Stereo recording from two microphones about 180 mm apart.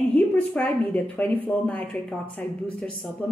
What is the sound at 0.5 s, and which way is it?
A woman's voice, 10° left (ahead or behind).